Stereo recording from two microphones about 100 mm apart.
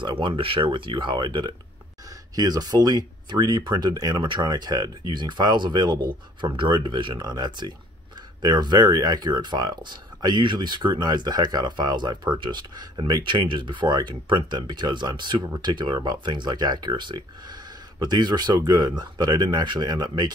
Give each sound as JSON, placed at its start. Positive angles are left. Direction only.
{"t": 0.0, "sound": "speech", "side_deg": -55}